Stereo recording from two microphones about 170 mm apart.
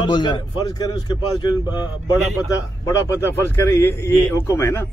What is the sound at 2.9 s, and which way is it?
A man's voice, 15° left (ahead or behind).